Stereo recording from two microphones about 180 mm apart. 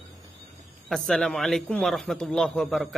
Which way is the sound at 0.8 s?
Centre (ahead or behind).